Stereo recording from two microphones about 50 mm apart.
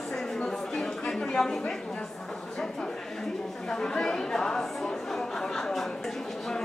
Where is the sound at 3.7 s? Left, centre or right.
Centre.